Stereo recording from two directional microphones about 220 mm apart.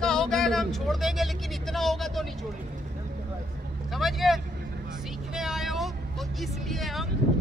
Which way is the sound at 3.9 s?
Centre (ahead or behind).